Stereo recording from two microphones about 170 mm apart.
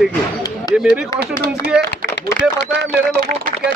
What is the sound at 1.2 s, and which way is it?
Speech, 65° right (ahead or behind).